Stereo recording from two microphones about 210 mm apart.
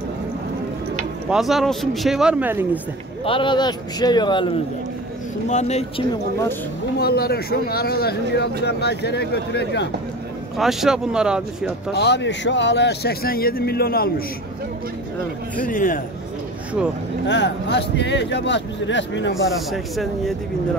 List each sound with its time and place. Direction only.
1.3 s a man's voice: centre (ahead or behind)
3.3 s speech: 25° left (ahead or behind)
7.0 s speech: 50° left (ahead or behind)
10.6 s a man's voice: centre (ahead or behind)
11.9 s speech: 55° left (ahead or behind)
15.6 s speech: 40° left (ahead or behind)
17.3 s speech: 55° left (ahead or behind)
19.7 s a man's voice: centre (ahead or behind)